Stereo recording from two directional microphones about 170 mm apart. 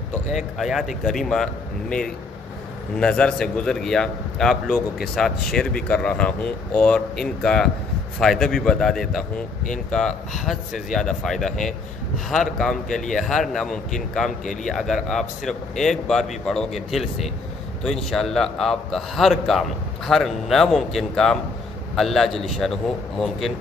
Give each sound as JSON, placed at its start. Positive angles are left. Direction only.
{"t": 0.3, "sound": "speech", "side_deg": 0}
{"t": 14.4, "sound": "a man's voice", "side_deg": 45}
{"t": 14.7, "sound": "speech", "side_deg": 0}